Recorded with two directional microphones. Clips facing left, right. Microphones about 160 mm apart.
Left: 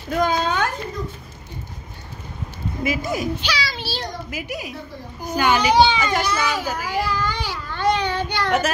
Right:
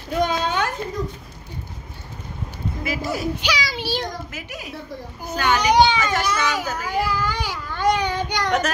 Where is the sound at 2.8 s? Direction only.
20° left (ahead or behind).